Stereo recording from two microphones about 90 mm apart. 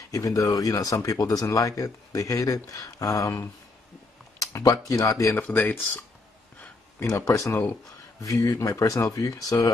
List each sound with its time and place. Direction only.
0.1 s speech: 40° left (ahead or behind)
4.4 s a sound: 40° left (ahead or behind)
4.8 s speech: 40° left (ahead or behind); by 6.0 s 20° left (ahead or behind)
7.0 s speech: 35° left (ahead or behind)